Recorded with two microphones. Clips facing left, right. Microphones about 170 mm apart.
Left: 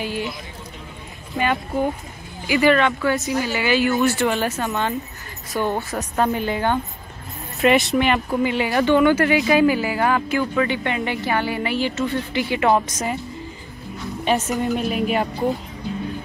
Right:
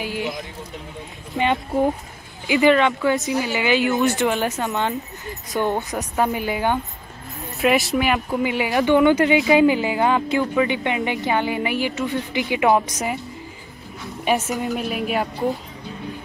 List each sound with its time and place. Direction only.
0.0 s speech: 15° right (ahead or behind)
1.3 s speech: 25° right (ahead or behind)
7.6 s speech: centre (ahead or behind)
14.5 s a woman's voice: centre (ahead or behind)